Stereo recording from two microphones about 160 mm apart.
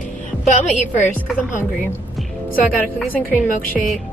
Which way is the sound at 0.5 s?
50° left (ahead or behind).